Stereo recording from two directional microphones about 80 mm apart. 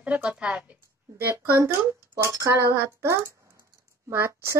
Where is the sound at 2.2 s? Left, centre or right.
Right.